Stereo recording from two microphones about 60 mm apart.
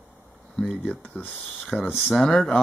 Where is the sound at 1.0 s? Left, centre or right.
Left.